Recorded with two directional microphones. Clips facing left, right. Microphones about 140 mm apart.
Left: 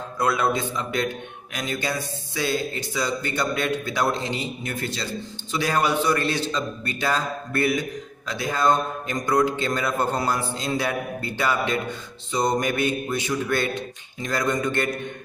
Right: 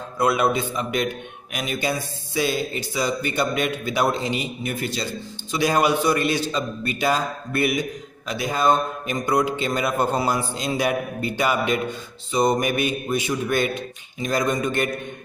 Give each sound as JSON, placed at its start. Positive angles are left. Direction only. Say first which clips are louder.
{"t": 0.2, "sound": "speech", "louder": "right 2 dB", "side_deg": -10}